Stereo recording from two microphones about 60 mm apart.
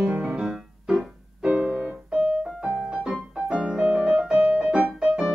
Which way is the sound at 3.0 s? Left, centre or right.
Centre.